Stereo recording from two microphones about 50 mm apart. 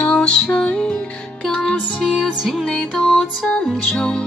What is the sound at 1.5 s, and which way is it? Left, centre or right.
Music, centre.